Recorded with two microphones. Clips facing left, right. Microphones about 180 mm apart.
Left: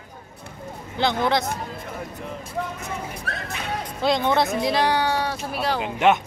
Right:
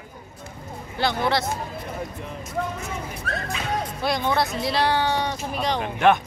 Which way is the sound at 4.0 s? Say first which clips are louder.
Left 4 dB; 20° left (ahead or behind).